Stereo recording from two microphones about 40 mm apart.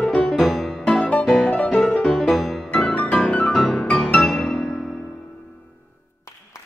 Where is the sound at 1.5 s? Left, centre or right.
Left.